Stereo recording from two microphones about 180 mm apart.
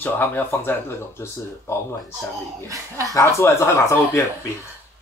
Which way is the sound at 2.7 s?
20° right (ahead or behind).